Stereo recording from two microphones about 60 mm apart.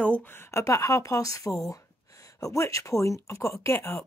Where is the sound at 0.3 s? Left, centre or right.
Left.